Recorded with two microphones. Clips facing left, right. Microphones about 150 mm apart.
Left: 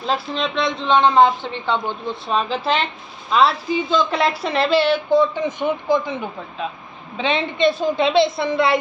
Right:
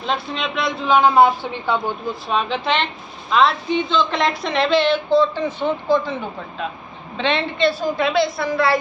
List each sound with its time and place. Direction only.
0.0 s a man's voice: centre (ahead or behind); by 6.1 s 15° left (ahead or behind)
7.2 s a woman's voice: 15° left (ahead or behind)